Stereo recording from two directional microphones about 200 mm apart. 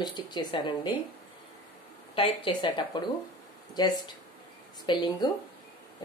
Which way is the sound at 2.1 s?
25° left (ahead or behind).